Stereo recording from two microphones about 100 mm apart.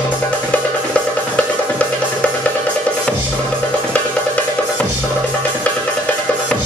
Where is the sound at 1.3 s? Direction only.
15° left (ahead or behind).